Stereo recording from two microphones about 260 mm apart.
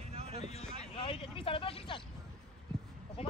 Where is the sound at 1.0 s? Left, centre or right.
Left.